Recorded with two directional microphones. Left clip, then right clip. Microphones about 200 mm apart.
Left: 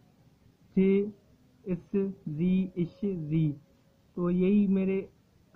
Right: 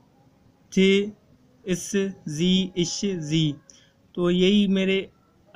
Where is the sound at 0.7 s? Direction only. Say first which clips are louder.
Right 6 dB; 10° right (ahead or behind).